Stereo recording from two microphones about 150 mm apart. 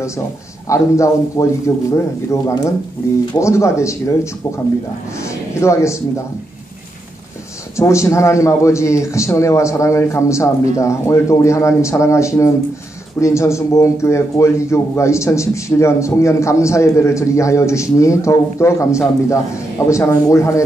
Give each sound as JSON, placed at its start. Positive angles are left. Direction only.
{"t": 0.7, "sound": "a man's voice", "side_deg": 20}
{"t": 7.7, "sound": "a man's voice", "side_deg": 20}